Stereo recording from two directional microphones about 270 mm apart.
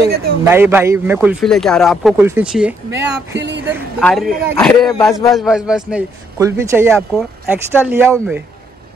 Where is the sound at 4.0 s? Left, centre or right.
Centre.